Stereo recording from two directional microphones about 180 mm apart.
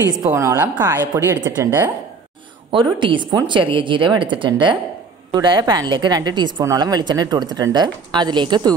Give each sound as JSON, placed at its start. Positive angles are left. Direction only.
{"t": 0.3, "sound": "speech", "side_deg": -10}
{"t": 2.7, "sound": "speech", "side_deg": -25}